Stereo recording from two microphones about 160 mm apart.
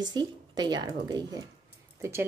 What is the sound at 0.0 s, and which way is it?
Speech, 25° right (ahead or behind).